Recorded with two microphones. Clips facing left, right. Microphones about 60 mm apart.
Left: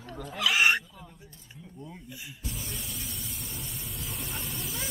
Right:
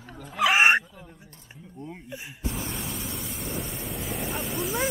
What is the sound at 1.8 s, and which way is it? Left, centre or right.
Speech, right.